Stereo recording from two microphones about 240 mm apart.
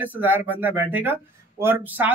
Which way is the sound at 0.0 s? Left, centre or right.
Centre.